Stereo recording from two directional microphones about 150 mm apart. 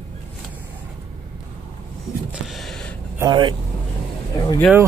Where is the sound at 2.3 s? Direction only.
Centre (ahead or behind).